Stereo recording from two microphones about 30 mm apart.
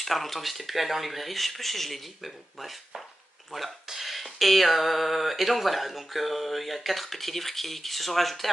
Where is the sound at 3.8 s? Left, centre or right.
Centre.